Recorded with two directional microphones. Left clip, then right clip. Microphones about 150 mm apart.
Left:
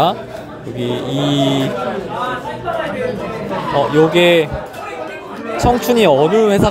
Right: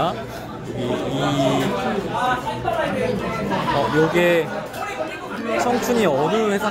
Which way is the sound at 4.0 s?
30° left (ahead or behind).